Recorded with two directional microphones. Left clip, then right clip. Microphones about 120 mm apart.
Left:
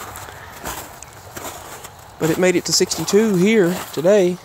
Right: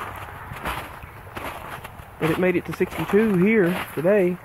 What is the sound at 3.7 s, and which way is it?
Speech, 30° left (ahead or behind).